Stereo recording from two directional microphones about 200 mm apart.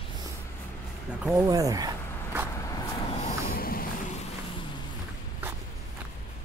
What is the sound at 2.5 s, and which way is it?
Vehicle, 15° left (ahead or behind).